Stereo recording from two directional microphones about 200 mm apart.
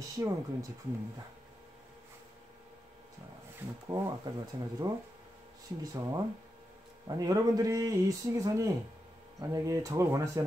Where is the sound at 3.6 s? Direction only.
10° right (ahead or behind).